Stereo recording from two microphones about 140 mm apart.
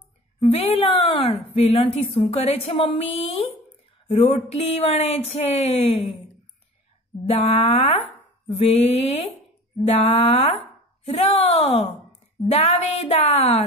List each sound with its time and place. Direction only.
0.4 s a woman's voice: 45° left (ahead or behind)
7.4 s a woman's voice: 45° left (ahead or behind)